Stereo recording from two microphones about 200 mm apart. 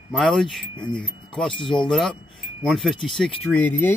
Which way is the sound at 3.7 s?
10° left (ahead or behind).